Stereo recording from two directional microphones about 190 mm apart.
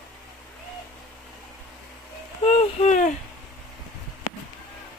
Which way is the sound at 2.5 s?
40° left (ahead or behind).